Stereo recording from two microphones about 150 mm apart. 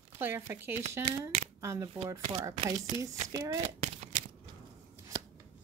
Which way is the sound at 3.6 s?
55° right (ahead or behind).